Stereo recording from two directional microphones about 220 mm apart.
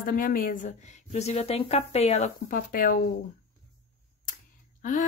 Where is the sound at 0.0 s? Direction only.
40° left (ahead or behind).